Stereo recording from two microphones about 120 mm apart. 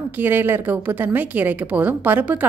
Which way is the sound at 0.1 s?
15° right (ahead or behind).